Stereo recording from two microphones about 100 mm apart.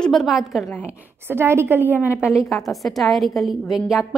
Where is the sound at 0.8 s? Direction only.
25° right (ahead or behind).